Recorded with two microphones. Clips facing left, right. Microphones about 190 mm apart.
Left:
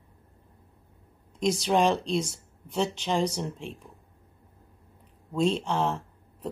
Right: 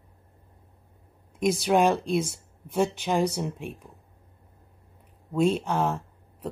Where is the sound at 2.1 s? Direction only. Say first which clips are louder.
Right 2 dB; 55° right (ahead or behind).